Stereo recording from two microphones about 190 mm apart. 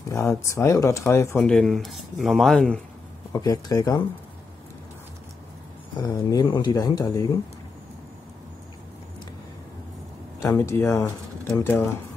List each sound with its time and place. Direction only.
0.1 s speech: 15° left (ahead or behind)
3.3 s speech: 20° left (ahead or behind)
5.9 s speech: 20° left (ahead or behind)
10.4 s speech: 15° left (ahead or behind)